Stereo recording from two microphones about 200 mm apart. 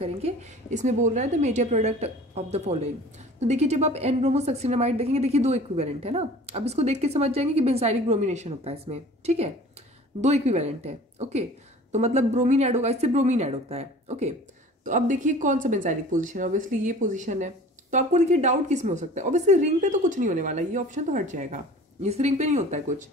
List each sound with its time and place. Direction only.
0.0 s a woman's voice: 35° right (ahead or behind)